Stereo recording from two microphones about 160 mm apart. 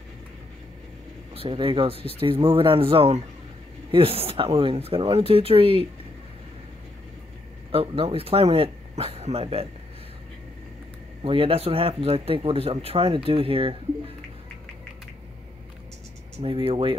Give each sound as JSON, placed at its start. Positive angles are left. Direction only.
{"t": 1.3, "sound": "speech", "side_deg": -35}
{"t": 7.7, "sound": "speech", "side_deg": -35}
{"t": 11.2, "sound": "speech", "side_deg": -35}
{"t": 16.3, "sound": "speech", "side_deg": -35}